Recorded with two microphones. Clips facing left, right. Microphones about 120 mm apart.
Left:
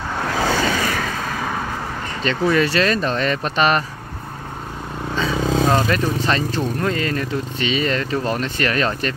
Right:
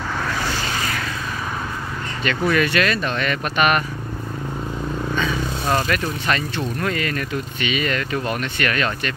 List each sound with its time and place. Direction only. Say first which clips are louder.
2.2 s speech: left 2 dB; 30° left (ahead or behind)
5.1 s vehicle: left 3 dB; 30° left (ahead or behind)
5.7 s speech: left 3 dB; 25° left (ahead or behind)